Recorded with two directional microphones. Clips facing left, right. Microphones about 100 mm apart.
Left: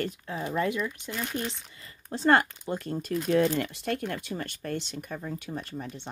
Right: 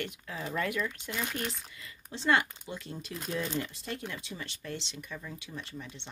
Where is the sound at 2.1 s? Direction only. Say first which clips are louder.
Left 5 dB; 45° left (ahead or behind).